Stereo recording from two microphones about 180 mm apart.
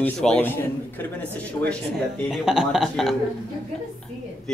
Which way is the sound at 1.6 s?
25° left (ahead or behind).